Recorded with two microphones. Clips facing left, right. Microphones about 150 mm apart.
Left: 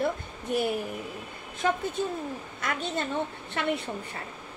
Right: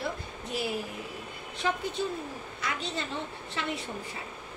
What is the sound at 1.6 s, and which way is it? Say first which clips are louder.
A woman's voice: left 3 dB; 50° left (ahead or behind).